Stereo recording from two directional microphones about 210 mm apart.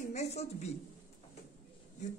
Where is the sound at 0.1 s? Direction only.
30° left (ahead or behind).